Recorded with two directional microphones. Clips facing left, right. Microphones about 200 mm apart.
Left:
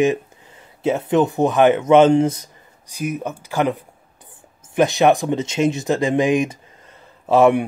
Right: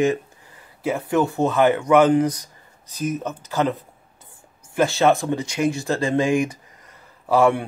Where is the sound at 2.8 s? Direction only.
10° left (ahead or behind).